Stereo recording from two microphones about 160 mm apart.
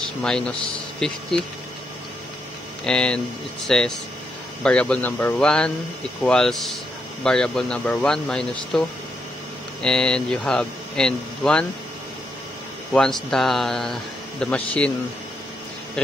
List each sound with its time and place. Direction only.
0.2 s speech: 5° left (ahead or behind)
2.8 s speech: 5° left (ahead or behind)
12.9 s speech: 5° left (ahead or behind)